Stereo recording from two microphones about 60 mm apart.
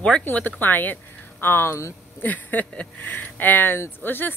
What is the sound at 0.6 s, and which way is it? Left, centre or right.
Speech, left.